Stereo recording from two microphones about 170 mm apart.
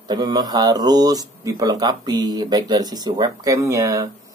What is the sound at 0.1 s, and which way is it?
Speech, 25° right (ahead or behind).